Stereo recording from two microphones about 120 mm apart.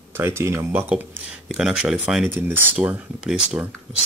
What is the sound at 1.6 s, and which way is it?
Speech, 5° right (ahead or behind).